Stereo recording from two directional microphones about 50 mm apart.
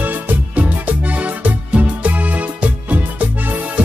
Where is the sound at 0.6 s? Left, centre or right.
Right.